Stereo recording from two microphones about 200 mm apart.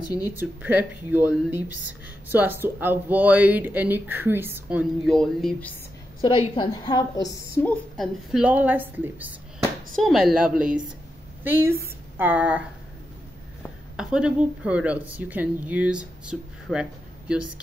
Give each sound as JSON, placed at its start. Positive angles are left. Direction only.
{"t": 0.4, "sound": "speech", "side_deg": -10}
{"t": 6.2, "sound": "a woman's voice", "side_deg": 25}
{"t": 8.0, "sound": "a woman's voice", "side_deg": -5}
{"t": 13.9, "sound": "speech", "side_deg": -5}